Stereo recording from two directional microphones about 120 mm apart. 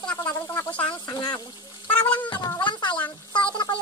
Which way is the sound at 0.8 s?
35° left (ahead or behind).